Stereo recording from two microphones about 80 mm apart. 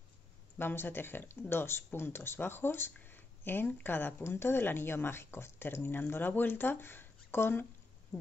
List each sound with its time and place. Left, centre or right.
0.6 s speech: left
8.1 s speech: centre